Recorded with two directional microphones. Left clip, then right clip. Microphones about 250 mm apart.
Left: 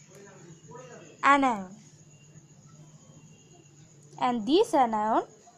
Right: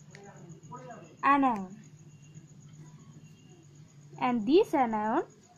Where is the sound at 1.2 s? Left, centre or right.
Centre.